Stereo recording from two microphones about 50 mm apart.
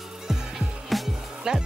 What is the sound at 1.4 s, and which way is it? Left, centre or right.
Music, centre.